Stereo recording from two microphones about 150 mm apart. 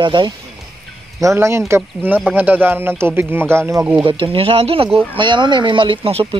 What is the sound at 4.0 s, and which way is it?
Speech, 35° right (ahead or behind).